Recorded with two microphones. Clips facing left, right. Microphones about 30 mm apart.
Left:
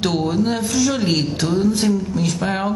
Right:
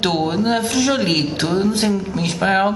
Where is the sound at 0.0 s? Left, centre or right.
Right.